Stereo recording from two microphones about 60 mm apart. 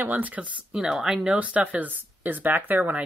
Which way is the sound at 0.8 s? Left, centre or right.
Centre.